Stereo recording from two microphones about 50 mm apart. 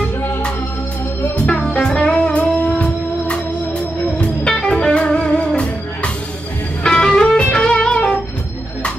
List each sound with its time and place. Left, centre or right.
1.3 s music: centre
6.8 s music: centre